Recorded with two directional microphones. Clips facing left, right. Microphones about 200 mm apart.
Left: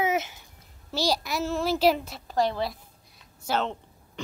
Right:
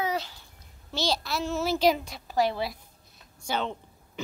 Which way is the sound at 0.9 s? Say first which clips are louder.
Left 2 dB; 10° left (ahead or behind).